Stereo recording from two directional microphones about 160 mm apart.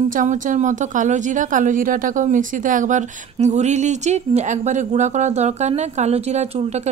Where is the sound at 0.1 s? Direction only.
55° right (ahead or behind).